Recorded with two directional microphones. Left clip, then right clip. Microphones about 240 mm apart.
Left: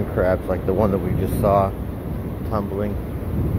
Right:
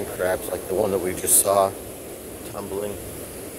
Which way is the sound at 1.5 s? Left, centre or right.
Right.